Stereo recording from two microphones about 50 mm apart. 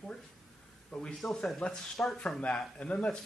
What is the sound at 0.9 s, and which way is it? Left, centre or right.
Speech, left.